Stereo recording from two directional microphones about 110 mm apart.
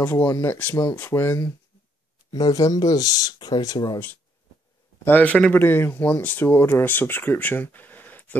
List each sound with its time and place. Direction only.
0.0 s speech: 15° left (ahead or behind)
2.3 s speech: 35° left (ahead or behind)
5.0 s speech: 15° left (ahead or behind)